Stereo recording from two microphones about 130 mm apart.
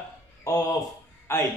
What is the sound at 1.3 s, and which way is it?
Speech, 20° left (ahead or behind).